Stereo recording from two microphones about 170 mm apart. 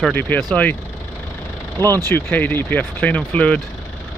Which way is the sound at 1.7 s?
15° left (ahead or behind).